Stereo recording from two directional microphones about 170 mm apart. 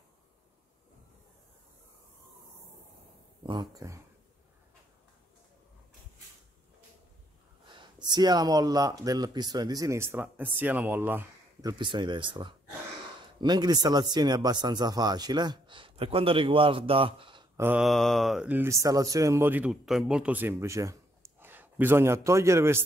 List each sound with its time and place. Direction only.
3.4 s speech: 25° right (ahead or behind)
8.1 s speech: 25° right (ahead or behind)
11.6 s speech: 25° right (ahead or behind)
17.6 s mantra: 10° right (ahead or behind)
17.8 s a man's voice: centre (ahead or behind); by 22.8 s 15° right (ahead or behind)